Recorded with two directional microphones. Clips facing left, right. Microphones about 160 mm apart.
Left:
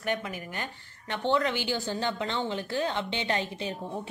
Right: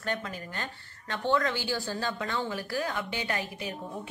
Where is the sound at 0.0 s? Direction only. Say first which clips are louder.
Left 2 dB; 15° left (ahead or behind).